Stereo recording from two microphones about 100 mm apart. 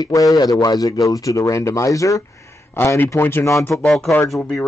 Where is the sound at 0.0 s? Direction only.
35° left (ahead or behind).